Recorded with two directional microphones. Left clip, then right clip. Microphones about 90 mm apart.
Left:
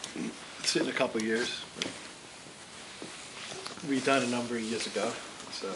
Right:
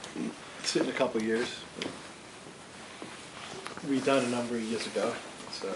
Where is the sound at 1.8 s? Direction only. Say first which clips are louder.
Left 1 dB; 30° left (ahead or behind).